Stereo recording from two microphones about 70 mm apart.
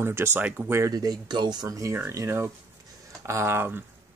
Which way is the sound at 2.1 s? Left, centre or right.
Right.